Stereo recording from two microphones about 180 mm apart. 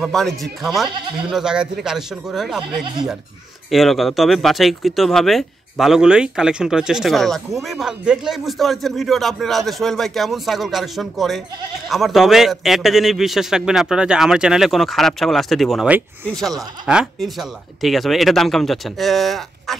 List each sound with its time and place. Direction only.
0.0 s speech: centre (ahead or behind)